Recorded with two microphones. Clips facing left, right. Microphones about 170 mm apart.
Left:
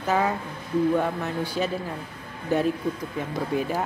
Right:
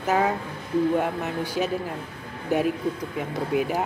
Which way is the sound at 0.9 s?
15° right (ahead or behind).